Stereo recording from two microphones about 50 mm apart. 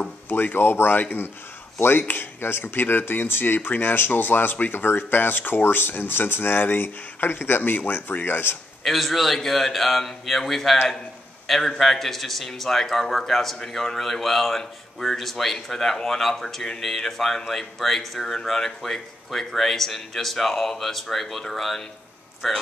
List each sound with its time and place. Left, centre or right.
0.3 s speech: left
8.8 s a man's voice: centre